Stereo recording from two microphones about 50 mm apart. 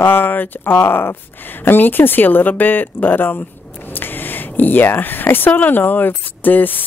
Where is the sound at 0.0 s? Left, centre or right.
Left.